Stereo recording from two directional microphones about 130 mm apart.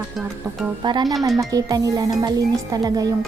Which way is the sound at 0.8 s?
35° right (ahead or behind).